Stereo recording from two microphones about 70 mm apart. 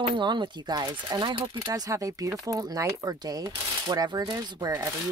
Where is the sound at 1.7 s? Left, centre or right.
Right.